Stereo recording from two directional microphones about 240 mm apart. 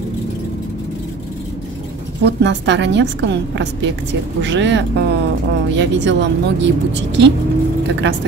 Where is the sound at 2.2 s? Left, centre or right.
Right.